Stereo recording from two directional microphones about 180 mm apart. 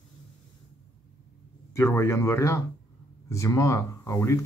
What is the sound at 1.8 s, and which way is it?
Speech, 15° left (ahead or behind).